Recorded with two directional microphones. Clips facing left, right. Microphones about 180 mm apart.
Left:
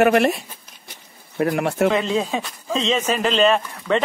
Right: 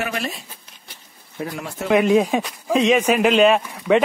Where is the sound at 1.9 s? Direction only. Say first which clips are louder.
Right 5 dB; 15° right (ahead or behind).